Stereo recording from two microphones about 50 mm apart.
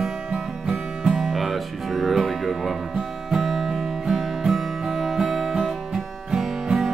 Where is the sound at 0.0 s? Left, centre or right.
Centre.